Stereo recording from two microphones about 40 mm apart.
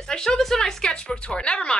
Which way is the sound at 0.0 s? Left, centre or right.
Centre.